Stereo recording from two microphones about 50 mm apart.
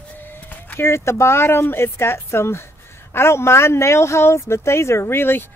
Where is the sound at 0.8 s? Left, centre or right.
Left.